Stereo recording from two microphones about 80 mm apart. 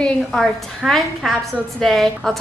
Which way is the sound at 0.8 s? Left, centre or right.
Centre.